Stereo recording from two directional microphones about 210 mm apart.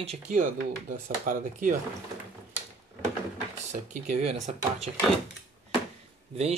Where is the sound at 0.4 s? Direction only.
40° right (ahead or behind).